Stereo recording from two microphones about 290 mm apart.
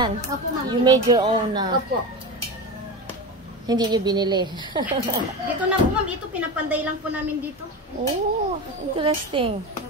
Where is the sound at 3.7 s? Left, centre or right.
Centre.